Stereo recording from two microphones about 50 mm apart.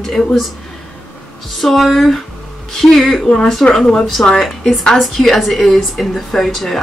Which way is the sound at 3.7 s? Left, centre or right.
Centre.